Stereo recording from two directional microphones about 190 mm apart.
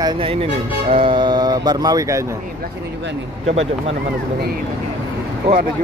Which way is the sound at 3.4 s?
35° right (ahead or behind).